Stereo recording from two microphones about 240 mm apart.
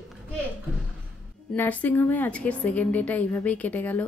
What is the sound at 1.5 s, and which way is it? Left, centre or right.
A woman's voice, centre.